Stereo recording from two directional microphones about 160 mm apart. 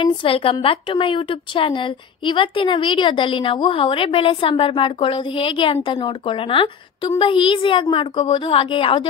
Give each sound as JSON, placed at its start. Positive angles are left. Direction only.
{"t": 0.0, "sound": "a woman's voice", "side_deg": 35}